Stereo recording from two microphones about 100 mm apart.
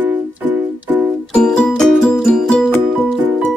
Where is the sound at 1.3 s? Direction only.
5° left (ahead or behind).